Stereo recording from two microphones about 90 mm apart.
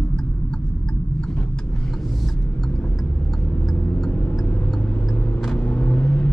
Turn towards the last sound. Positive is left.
turn(degrees=15)  # may be behind; listen again after turning